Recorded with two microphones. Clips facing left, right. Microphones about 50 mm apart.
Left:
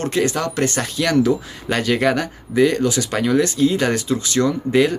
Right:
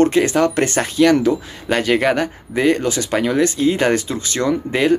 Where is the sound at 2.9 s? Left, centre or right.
Centre.